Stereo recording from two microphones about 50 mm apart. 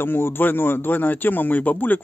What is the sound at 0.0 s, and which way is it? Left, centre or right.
Speech, left.